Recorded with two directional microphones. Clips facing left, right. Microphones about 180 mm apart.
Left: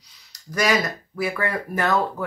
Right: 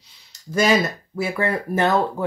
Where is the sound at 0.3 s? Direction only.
25° right (ahead or behind).